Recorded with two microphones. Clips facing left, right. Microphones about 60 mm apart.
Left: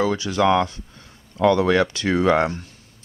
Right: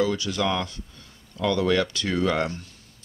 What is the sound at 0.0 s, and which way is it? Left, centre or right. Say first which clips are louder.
Speech: left 5 dB; left.